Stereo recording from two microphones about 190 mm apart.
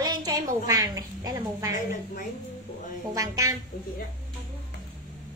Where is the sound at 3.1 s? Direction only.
20° right (ahead or behind).